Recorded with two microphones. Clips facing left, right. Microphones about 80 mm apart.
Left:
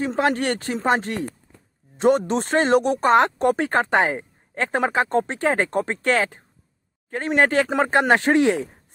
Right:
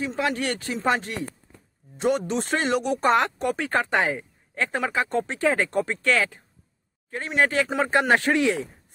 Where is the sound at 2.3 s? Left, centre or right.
Left.